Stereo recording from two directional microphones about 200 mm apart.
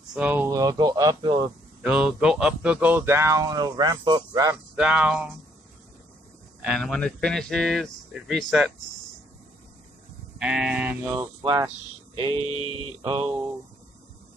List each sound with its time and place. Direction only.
0.1 s speech: 5° right (ahead or behind)
0.5 s speech: 20° right (ahead or behind)
1.8 s speech: 5° right (ahead or behind)
4.7 s speech: 5° right (ahead or behind)
6.6 s speech: centre (ahead or behind)
10.4 s speech: 5° right (ahead or behind); by 12.4 s 25° right (ahead or behind)